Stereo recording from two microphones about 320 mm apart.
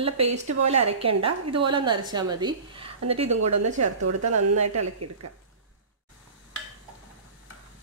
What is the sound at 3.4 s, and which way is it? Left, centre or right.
Speech, right.